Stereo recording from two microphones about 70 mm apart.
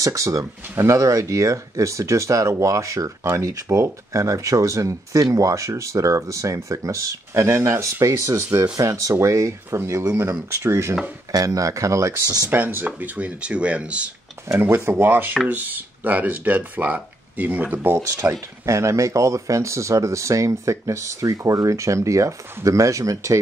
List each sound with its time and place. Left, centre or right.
0.0 s speech: right
11.3 s speech: right
12.4 s speech: right
14.5 s speech: right
14.9 s speech: right
18.7 s speech: right